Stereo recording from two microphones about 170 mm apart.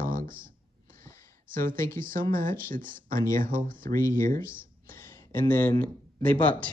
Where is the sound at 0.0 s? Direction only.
55° right (ahead or behind).